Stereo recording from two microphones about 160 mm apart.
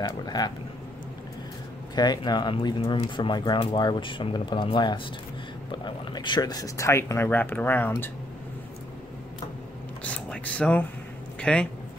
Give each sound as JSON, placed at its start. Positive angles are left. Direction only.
{"t": 0.2, "sound": "speech", "side_deg": 25}
{"t": 2.0, "sound": "speech", "side_deg": 25}
{"t": 10.0, "sound": "a sound", "side_deg": 10}
{"t": 11.3, "sound": "speech", "side_deg": 5}